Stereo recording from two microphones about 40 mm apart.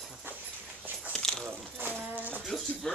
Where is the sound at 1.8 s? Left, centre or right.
Right.